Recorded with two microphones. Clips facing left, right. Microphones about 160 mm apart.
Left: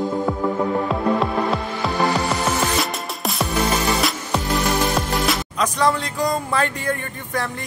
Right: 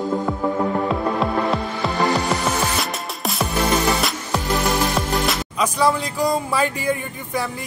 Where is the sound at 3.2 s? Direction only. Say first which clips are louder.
Even; centre (ahead or behind).